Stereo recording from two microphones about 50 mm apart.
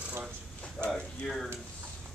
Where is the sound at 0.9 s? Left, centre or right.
Centre.